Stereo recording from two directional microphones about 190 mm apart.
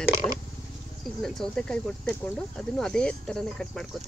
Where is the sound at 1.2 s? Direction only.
Centre (ahead or behind).